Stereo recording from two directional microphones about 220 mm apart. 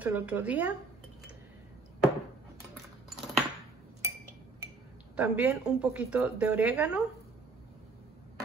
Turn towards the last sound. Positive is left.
turn(degrees=-5)  # may be behind; listen again after turning